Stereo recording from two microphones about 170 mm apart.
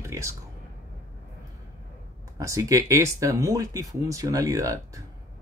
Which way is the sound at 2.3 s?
20° right (ahead or behind).